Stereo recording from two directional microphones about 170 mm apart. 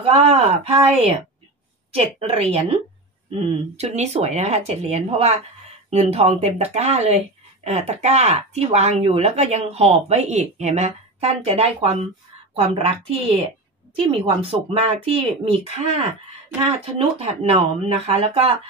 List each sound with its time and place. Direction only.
0.0 s speech: 40° right (ahead or behind)
17.2 s speech: 40° right (ahead or behind)